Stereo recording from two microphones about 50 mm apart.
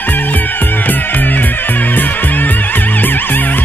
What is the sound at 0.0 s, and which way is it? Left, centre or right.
Music, left.